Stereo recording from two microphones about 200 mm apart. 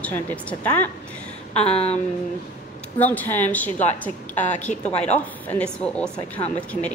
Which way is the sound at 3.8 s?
35° left (ahead or behind).